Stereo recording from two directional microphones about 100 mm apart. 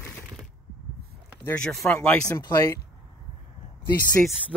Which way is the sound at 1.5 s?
5° left (ahead or behind).